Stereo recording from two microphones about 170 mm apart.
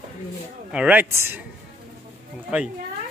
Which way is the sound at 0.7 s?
10° right (ahead or behind).